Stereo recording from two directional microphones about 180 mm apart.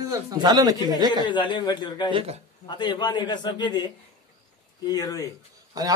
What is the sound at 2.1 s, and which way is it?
Speech, 35° right (ahead or behind).